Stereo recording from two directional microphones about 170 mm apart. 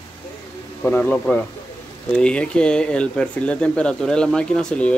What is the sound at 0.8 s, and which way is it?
Speech, 10° left (ahead or behind).